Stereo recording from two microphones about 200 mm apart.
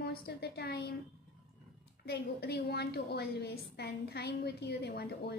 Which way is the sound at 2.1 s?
55° left (ahead or behind).